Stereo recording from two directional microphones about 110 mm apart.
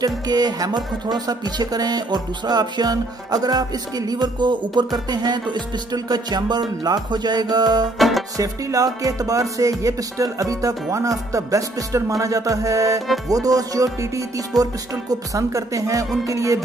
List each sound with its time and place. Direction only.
0.0 s speech: 40° right (ahead or behind)
16.3 s music: 30° right (ahead or behind)